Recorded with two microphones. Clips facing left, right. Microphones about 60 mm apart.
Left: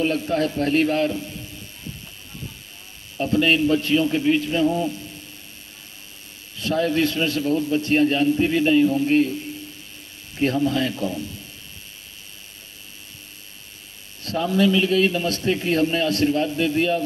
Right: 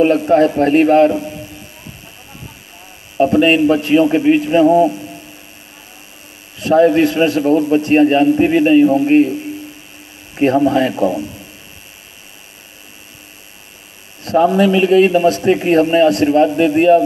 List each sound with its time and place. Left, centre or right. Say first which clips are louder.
0.0 s a man's voice: right 11 dB; right
3.2 s a man's voice: right 8 dB; right
6.5 s a man's voice: right 11 dB; right
14.2 s a man's voice: right 8 dB; right